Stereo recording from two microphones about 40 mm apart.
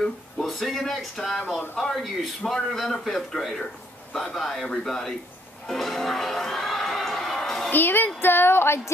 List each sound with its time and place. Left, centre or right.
0.5 s a man's voice: centre
5.7 s music: centre
7.7 s a sound: left
8.2 s speech: left